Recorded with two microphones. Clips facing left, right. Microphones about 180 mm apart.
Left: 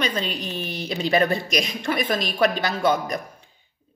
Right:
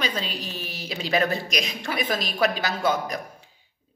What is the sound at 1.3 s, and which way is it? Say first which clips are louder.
Speech: left 4 dB; 45° left (ahead or behind).